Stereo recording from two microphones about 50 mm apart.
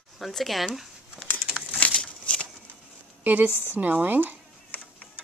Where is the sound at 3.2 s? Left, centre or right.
Right.